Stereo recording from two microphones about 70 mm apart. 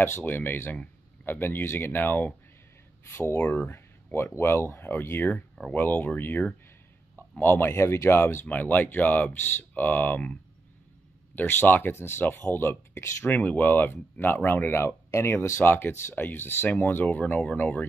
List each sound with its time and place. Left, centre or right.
0.2 s speech: left
11.3 s speech: left